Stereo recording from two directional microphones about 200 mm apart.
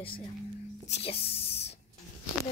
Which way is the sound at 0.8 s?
30° left (ahead or behind).